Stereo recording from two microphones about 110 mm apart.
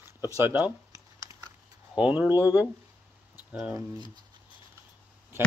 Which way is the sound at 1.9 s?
10° right (ahead or behind).